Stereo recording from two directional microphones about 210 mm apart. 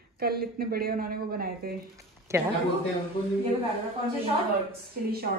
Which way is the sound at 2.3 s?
10° right (ahead or behind).